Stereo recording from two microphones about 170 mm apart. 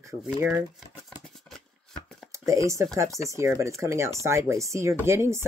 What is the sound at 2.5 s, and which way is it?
Speech, 20° right (ahead or behind).